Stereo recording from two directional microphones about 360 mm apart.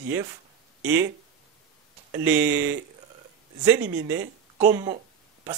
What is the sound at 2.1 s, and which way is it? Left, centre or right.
Speech, centre.